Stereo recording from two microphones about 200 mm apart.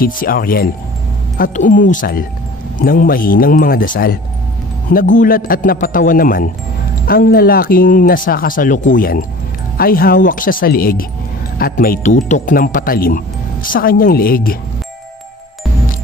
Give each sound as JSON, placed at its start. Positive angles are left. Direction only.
{"t": 0.0, "sound": "speech", "side_deg": 45}